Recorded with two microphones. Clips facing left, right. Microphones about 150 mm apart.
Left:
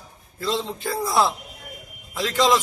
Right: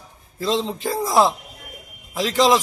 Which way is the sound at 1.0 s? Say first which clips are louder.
Right 4 dB; 35° right (ahead or behind).